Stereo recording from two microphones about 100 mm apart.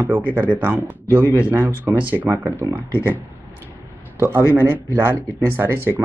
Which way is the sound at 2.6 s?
35° right (ahead or behind).